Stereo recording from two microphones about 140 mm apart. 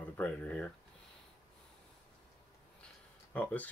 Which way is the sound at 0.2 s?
10° left (ahead or behind).